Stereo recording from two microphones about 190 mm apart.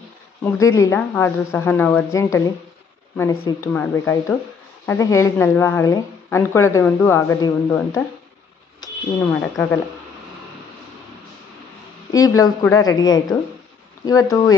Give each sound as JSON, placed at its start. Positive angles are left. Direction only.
{"t": 0.4, "sound": "a woman's voice", "side_deg": 15}
{"t": 12.1, "sound": "a woman's voice", "side_deg": 20}